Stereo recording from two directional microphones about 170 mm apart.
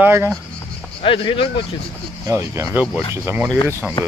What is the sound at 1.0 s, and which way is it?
Speech, 30° left (ahead or behind).